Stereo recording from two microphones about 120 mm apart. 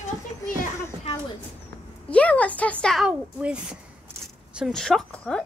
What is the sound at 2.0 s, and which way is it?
Speech, 10° left (ahead or behind).